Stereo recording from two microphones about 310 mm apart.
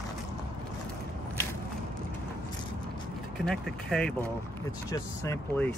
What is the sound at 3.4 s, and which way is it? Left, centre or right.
Speech, centre.